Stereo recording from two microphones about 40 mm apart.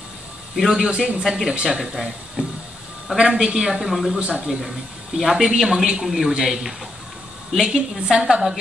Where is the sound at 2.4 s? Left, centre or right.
Right.